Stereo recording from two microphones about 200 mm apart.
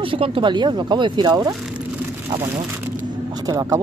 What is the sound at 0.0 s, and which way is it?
Speech, 25° right (ahead or behind).